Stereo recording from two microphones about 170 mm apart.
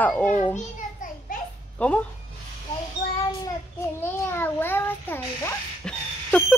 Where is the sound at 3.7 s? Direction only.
15° left (ahead or behind).